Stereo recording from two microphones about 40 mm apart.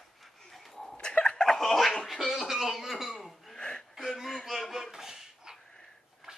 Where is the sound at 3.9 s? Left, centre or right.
Centre.